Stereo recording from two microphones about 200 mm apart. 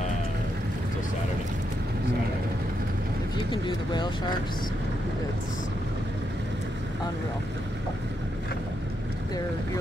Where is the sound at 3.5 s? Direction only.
25° left (ahead or behind).